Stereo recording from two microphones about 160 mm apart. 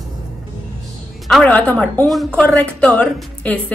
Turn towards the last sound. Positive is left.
turn(degrees=10)  # may be behind; listen again after turning